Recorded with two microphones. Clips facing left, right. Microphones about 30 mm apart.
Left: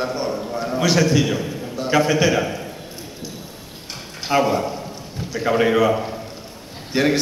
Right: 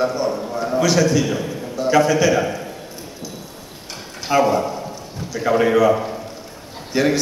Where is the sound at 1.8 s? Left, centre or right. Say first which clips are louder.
Right 2 dB; centre.